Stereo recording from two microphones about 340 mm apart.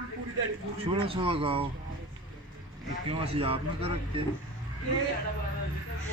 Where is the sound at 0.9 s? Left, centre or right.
Centre.